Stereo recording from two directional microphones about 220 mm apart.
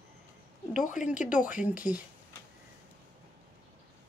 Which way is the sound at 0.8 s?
35° left (ahead or behind).